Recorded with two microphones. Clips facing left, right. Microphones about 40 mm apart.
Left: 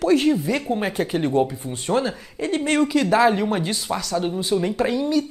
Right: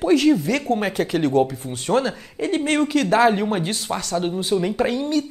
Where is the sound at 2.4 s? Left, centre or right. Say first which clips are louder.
Even; right.